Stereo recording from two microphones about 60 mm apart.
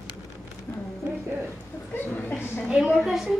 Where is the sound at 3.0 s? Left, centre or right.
Centre.